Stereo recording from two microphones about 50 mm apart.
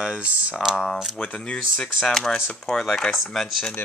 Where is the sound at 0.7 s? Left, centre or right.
Centre.